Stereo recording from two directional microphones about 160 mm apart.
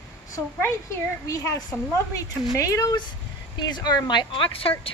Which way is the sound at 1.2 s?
20° left (ahead or behind).